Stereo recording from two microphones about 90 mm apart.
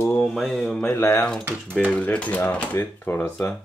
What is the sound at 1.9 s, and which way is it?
Speech, 15° left (ahead or behind).